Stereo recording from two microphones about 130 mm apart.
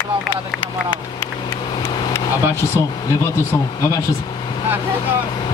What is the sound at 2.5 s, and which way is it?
Speech, 20° left (ahead or behind).